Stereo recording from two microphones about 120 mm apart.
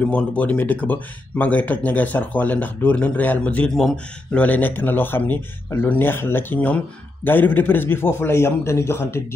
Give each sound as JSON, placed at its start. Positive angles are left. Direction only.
{"t": 0.0, "sound": "a man's voice", "side_deg": 10}